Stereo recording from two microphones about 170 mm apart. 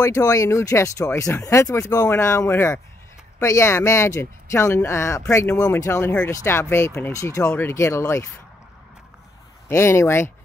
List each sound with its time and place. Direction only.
0.0 s speech: 20° left (ahead or behind)
9.7 s speech: 15° left (ahead or behind)